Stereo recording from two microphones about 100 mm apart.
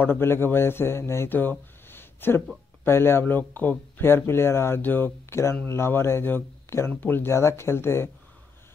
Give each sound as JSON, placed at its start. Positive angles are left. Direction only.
{"t": 0.0, "sound": "speech", "side_deg": 20}